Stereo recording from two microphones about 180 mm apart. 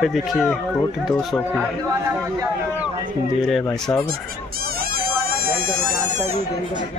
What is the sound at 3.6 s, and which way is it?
Speech, 10° left (ahead or behind).